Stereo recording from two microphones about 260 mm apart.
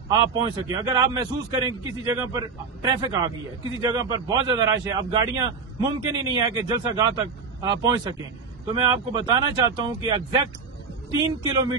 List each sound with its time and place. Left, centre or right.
0.1 s a man's voice: centre